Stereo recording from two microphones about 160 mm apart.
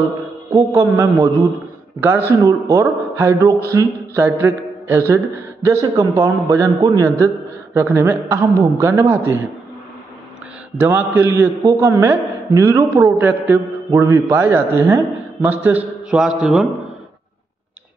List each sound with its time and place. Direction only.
0.5 s a man's voice: 20° right (ahead or behind)
10.8 s a man's voice: 15° right (ahead or behind)